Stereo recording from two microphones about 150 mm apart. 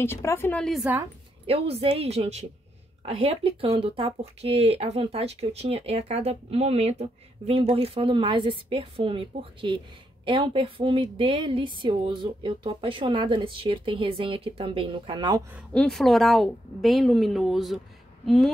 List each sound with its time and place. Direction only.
0.0 s a woman's voice: 15° left (ahead or behind)
0.9 s speech: 10° right (ahead or behind)
1.5 s a woman's voice: 40° right (ahead or behind)
15.7 s a woman's voice: 5° left (ahead or behind)